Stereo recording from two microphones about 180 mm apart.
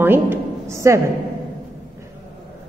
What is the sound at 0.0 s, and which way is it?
A woman's voice, 10° right (ahead or behind).